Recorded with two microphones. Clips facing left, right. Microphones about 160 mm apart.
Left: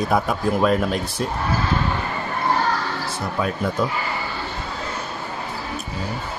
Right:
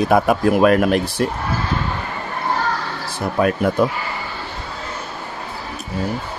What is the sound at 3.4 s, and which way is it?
Speech, 60° right (ahead or behind).